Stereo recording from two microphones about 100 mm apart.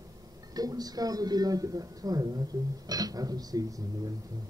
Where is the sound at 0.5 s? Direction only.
40° right (ahead or behind).